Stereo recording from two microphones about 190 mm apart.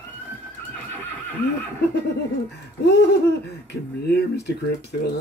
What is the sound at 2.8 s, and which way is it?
Speech, 60° left (ahead or behind).